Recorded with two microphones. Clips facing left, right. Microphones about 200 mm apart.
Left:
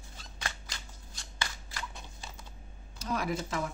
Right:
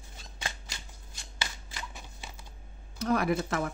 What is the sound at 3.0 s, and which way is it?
Speech, 60° right (ahead or behind).